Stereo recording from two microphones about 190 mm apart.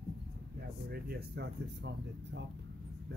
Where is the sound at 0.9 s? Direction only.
60° right (ahead or behind).